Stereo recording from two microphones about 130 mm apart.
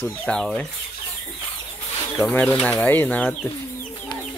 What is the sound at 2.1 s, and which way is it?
Speech, 10° left (ahead or behind).